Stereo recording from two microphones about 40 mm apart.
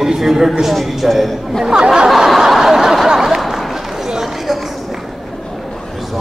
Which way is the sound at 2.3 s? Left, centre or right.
Centre.